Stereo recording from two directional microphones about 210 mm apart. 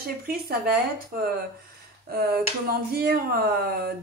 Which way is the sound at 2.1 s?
45° right (ahead or behind).